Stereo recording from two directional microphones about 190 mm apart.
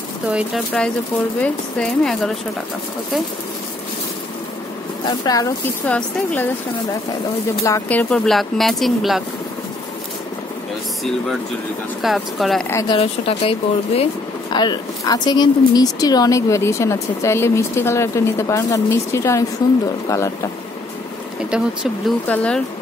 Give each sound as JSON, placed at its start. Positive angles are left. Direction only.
{"t": 0.8, "sound": "speech", "side_deg": 5}
{"t": 5.0, "sound": "speech", "side_deg": 20}
{"t": 5.9, "sound": "speech", "side_deg": 10}
{"t": 7.6, "sound": "speech", "side_deg": 10}
{"t": 12.0, "sound": "speech", "side_deg": 0}
{"t": 12.8, "sound": "speech", "side_deg": 30}
{"t": 21.5, "sound": "speech", "side_deg": -5}
{"t": 22.3, "sound": "speech", "side_deg": 5}